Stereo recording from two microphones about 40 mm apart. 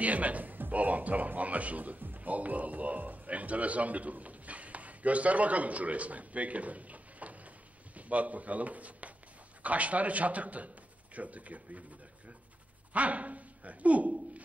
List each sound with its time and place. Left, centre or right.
0.0 s a man's voice: right
12.9 s speech: right